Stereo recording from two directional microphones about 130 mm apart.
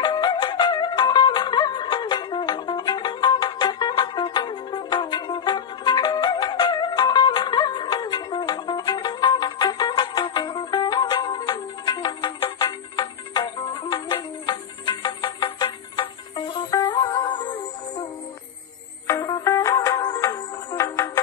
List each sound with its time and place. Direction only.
0.0 s music: 35° left (ahead or behind)
19.0 s music: 30° left (ahead or behind)